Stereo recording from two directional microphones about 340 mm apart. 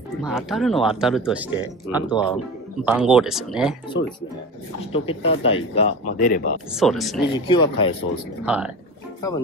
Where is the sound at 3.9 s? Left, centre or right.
Left.